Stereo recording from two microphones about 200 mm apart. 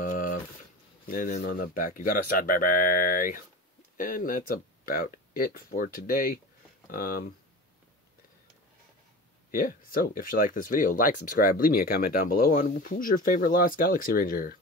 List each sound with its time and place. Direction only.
0.0 s a sound: 45° left (ahead or behind)
1.0 s speech: 45° left (ahead or behind)
9.5 s speech: 45° left (ahead or behind)